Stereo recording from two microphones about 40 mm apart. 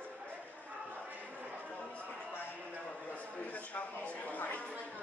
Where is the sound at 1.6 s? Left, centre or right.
Left.